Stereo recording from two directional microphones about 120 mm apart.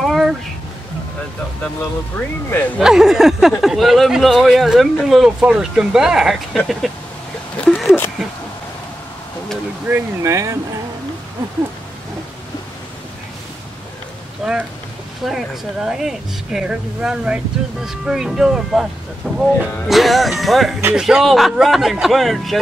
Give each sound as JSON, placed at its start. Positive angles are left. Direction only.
{"t": 0.0, "sound": "a sound", "side_deg": 0}
{"t": 1.6, "sound": "speech", "side_deg": 15}
{"t": 2.8, "sound": "speech", "side_deg": -5}
{"t": 7.5, "sound": "a sound", "side_deg": 10}
{"t": 9.8, "sound": "speech", "side_deg": -20}
{"t": 14.4, "sound": "speech", "side_deg": -5}